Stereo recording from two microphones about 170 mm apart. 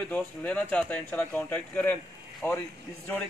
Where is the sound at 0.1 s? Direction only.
10° left (ahead or behind).